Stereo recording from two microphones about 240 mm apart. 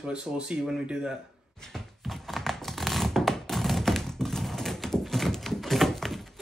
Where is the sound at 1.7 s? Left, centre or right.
Centre.